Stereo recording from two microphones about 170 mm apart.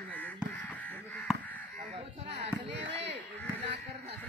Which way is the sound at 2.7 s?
90° right.